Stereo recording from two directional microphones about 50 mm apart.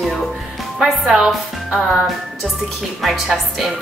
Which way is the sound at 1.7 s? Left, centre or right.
Centre.